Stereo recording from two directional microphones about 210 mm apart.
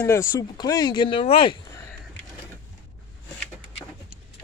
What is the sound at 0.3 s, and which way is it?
Speech, 15° left (ahead or behind).